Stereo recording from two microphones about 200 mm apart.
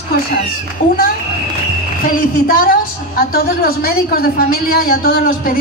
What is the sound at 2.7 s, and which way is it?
A woman's voice, 45° left (ahead or behind).